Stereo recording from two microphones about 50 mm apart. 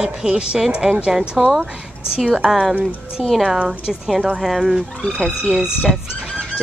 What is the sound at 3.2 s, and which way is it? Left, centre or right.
Speech, centre.